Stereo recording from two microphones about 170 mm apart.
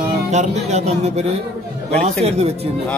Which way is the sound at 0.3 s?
40° right (ahead or behind).